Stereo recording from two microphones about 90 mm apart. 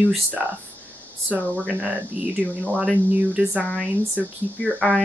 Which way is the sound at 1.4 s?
15° left (ahead or behind).